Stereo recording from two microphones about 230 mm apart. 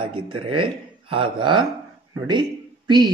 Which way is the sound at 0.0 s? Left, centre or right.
Right.